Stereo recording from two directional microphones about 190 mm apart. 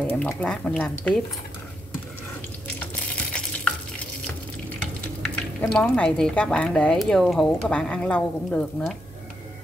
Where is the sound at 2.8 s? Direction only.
5° left (ahead or behind).